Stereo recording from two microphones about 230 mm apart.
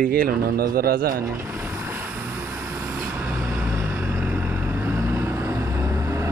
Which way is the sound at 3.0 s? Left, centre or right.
Centre.